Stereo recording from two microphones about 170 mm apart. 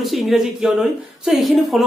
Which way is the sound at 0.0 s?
Centre (ahead or behind).